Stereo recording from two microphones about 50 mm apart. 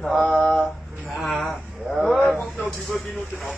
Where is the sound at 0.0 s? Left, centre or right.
Centre.